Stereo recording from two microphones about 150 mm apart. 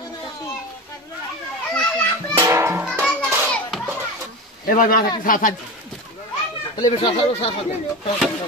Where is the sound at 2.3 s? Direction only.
15° right (ahead or behind).